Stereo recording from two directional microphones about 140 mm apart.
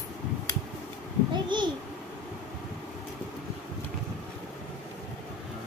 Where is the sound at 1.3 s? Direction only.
35° right (ahead or behind).